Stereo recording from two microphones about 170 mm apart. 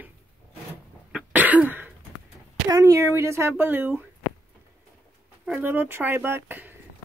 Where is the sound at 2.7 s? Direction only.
20° right (ahead or behind).